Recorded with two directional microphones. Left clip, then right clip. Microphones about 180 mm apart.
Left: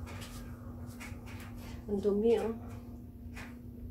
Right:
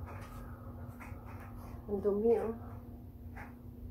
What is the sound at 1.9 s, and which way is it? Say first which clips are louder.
Speech: left 1 dB; 25° left (ahead or behind).